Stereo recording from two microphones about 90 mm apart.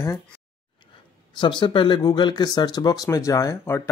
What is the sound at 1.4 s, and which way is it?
Speech, 60° left (ahead or behind).